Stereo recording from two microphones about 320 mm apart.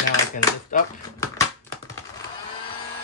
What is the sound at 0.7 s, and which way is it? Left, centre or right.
Speech, left.